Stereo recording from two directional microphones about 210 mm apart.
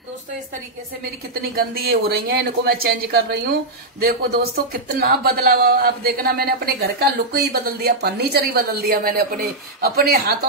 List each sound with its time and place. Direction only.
1.5 s speech: 45° right (ahead or behind)